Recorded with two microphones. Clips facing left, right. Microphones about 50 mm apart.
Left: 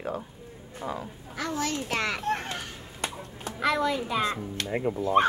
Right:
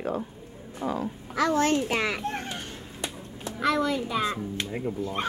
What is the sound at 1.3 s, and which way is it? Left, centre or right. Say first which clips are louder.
Speech: right 8 dB; right.